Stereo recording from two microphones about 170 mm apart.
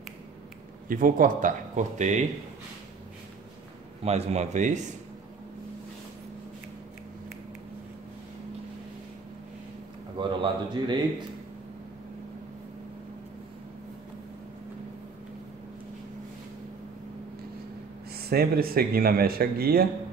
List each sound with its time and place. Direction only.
0.8 s speech: 55° right (ahead or behind)
4.0 s a man's voice: 40° right (ahead or behind)
10.1 s speech: 30° right (ahead or behind)
18.1 s speech: 65° right (ahead or behind)